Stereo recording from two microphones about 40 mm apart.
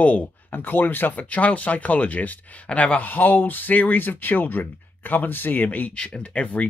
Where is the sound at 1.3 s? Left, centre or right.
Left.